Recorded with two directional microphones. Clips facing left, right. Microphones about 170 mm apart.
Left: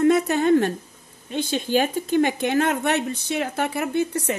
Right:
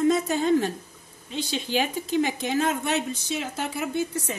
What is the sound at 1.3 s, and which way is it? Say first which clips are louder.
A woman's voice: left 5 dB; 50° left (ahead or behind).